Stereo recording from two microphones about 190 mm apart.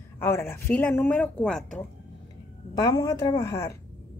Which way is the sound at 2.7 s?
20° left (ahead or behind).